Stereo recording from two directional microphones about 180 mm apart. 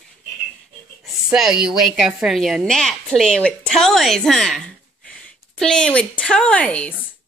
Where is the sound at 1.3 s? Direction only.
5° right (ahead or behind).